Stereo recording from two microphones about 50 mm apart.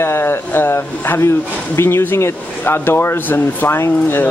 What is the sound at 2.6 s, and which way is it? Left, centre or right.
Speech, left.